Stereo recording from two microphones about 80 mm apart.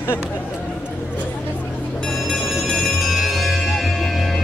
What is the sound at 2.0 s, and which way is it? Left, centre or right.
Music, centre.